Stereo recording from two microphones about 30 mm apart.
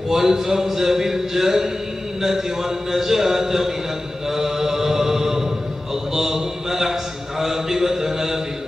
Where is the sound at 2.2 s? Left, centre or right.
Centre.